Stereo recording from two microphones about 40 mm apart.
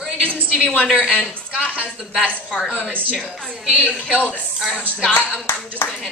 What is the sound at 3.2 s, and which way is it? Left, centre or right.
Speech, centre.